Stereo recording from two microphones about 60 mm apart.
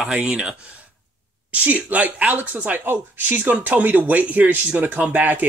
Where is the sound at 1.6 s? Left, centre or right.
Right.